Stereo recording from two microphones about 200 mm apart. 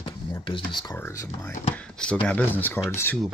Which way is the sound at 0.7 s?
20° left (ahead or behind).